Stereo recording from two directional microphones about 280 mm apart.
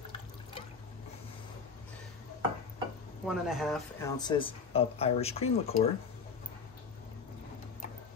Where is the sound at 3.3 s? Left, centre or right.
Centre; by 5.7 s left.